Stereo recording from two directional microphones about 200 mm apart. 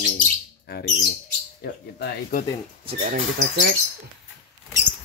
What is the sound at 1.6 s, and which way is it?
Speech, 45° left (ahead or behind).